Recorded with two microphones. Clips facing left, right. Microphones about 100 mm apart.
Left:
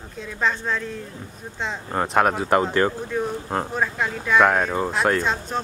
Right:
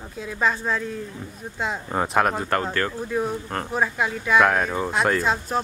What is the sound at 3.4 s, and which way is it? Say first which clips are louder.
Speech: left 4 dB; 20° left (ahead or behind).